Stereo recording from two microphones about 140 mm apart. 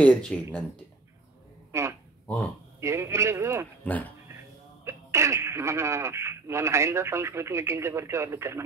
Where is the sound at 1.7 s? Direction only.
20° right (ahead or behind).